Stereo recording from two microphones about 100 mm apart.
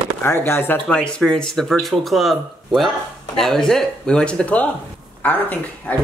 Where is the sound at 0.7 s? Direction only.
10° left (ahead or behind).